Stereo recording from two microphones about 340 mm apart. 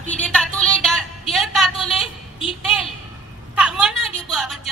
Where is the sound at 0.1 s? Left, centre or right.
Centre.